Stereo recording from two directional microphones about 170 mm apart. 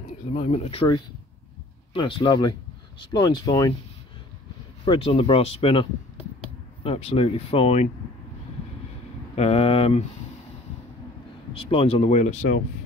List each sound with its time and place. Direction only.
0.3 s speech: 35° left (ahead or behind)
4.8 s speech: 35° left (ahead or behind)
9.3 s speech: 35° left (ahead or behind)
11.5 s speech: 35° left (ahead or behind)